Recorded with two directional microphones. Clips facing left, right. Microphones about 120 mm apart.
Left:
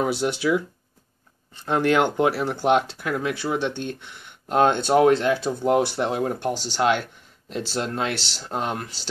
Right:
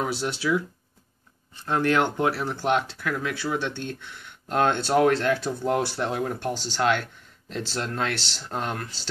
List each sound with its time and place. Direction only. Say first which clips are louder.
0.0 s speech: left 4 dB; 15° left (ahead or behind)
1.7 s speech: left 3 dB; 20° left (ahead or behind)